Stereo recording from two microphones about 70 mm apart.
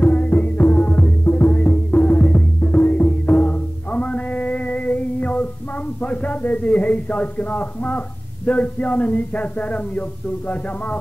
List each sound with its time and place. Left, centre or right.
0.0 s music: left
5.9 s a man's voice: left